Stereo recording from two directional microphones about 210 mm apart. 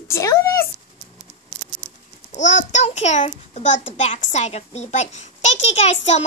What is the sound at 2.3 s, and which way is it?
A woman's voice, 35° left (ahead or behind).